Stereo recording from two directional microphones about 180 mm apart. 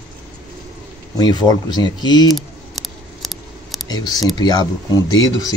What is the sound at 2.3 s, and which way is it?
Scissors, centre (ahead or behind).